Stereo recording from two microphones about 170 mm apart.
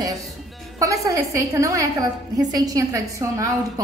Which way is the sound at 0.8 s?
20° right (ahead or behind).